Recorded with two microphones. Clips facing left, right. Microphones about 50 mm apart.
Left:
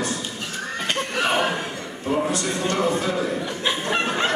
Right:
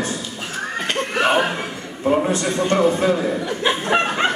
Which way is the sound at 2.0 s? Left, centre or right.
Right.